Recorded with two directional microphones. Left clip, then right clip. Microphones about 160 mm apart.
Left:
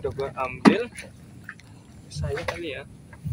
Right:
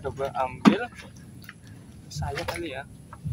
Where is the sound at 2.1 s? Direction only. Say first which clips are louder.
Right 2 dB; 30° right (ahead or behind).